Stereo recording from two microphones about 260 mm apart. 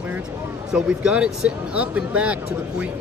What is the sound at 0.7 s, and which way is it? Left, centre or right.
Speech, centre.